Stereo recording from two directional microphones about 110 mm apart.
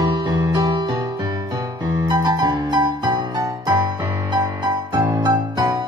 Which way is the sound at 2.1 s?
40° right (ahead or behind).